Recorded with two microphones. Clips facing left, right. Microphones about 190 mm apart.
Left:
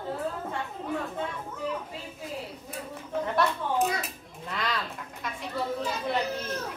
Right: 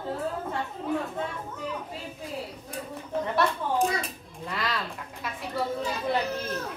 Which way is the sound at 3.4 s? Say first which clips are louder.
Right 1 dB; centre (ahead or behind).